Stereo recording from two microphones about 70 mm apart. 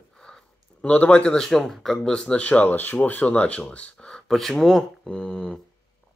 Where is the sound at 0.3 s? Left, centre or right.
Centre.